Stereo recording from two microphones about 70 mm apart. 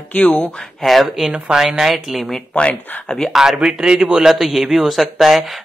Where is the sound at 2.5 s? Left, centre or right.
Centre.